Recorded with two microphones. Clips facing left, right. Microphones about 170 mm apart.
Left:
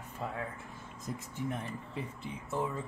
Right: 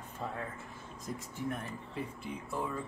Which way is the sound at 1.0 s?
20° left (ahead or behind).